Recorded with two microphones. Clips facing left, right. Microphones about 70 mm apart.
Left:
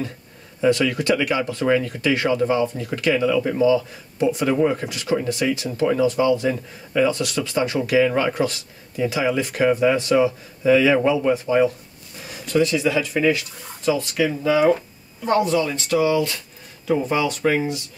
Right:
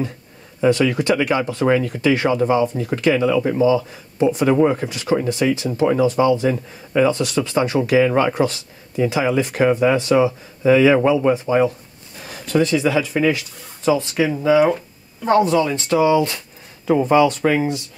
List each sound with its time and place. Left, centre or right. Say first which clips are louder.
0.7 s speech: right 2 dB; right